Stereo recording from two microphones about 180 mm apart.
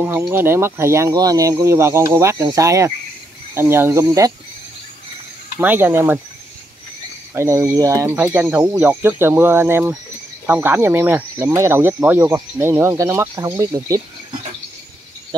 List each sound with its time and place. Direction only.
0.0 s speech: 10° right (ahead or behind)
5.6 s speech: 10° right (ahead or behind)
7.3 s speech: 15° right (ahead or behind)